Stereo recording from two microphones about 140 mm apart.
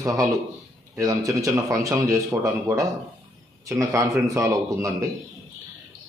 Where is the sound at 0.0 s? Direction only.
25° right (ahead or behind).